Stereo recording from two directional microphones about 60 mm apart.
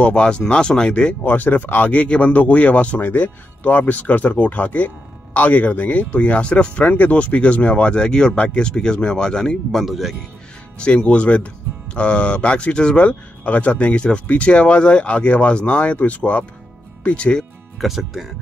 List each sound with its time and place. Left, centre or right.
0.0 s speech: centre
1.2 s speech: left; by 9.6 s centre
9.7 s speech: centre
10.8 s speech: centre
17.7 s speech: centre